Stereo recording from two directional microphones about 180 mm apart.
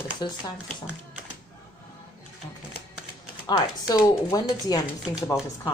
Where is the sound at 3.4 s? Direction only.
20° left (ahead or behind).